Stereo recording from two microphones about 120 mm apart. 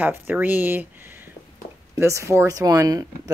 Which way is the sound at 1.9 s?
25° right (ahead or behind).